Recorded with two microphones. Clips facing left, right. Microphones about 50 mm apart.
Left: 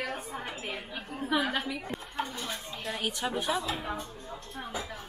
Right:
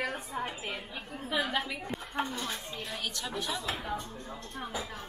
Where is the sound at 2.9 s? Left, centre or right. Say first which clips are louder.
Left 6 dB; centre.